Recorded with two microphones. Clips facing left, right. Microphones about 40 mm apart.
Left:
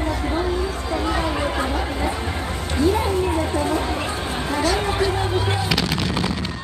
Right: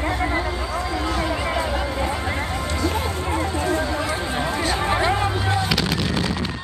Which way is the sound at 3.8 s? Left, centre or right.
Left.